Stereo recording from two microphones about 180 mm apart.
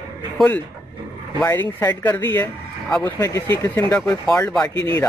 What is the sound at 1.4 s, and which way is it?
Speech, 10° left (ahead or behind).